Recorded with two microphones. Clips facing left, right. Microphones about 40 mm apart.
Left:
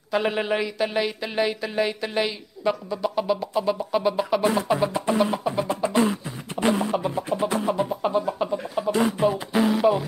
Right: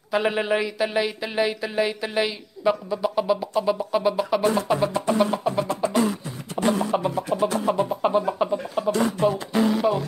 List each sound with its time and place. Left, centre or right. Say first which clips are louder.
0.1 s speech: right 1 dB; centre
5.2 s speech: right 2 dB; centre
5.7 s music: left 3 dB; left
6.5 s a sound: even; centre
7.1 s music: right 1 dB; centre
7.6 s speech: right 2 dB; centre
8.0 s a sound: right 2 dB; centre
9.2 s speech: even; centre